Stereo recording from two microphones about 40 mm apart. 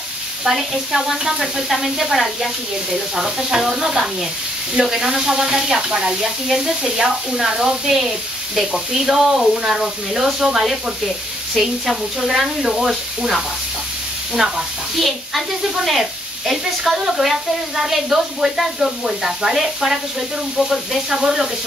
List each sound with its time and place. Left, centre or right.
0.4 s speech: centre
14.4 s speech: centre
15.0 s speech: centre
21.1 s speech: centre